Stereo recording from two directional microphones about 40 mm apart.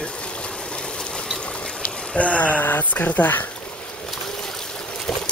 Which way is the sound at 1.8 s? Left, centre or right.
Left.